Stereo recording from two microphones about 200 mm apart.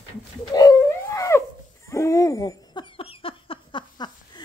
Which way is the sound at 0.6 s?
15° left (ahead or behind).